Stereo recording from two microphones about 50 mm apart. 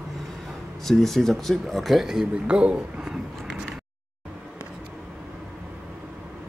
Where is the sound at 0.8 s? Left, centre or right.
Centre.